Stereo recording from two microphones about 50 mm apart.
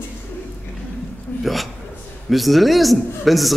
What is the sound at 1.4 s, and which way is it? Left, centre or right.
A man's voice, centre.